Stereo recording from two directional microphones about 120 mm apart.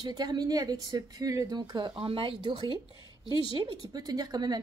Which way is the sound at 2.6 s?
40° left (ahead or behind).